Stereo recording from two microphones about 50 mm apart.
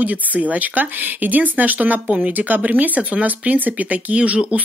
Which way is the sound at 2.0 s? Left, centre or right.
Right.